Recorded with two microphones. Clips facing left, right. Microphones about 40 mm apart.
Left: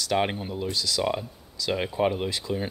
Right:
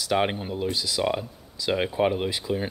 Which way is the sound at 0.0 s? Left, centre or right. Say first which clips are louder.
Right 1 dB; centre.